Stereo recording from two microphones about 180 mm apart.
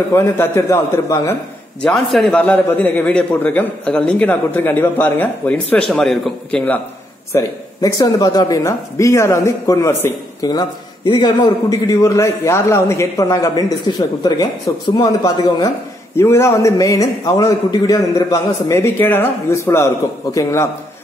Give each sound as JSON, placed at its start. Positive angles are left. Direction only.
{"t": 0.1, "sound": "a man's voice", "side_deg": 15}
{"t": 1.8, "sound": "a man's voice", "side_deg": 0}
{"t": 7.3, "sound": "a man's voice", "side_deg": 20}